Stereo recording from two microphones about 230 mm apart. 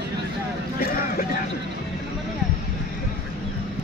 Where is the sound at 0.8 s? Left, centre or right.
Left.